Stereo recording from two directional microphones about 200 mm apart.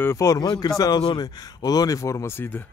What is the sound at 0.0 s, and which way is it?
Speech, 15° left (ahead or behind).